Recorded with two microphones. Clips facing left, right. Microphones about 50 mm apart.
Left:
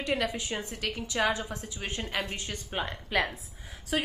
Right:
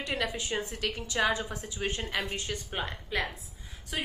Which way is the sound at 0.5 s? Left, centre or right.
Right.